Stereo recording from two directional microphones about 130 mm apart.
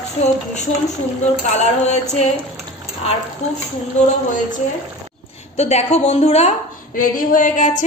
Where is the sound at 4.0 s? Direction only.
65° left (ahead or behind).